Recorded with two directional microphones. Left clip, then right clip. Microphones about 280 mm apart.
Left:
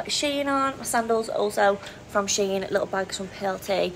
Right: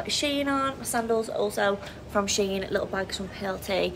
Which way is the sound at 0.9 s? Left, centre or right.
Left.